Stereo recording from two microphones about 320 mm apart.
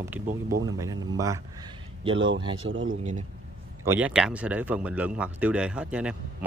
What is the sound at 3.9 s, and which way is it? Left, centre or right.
A man's voice, centre.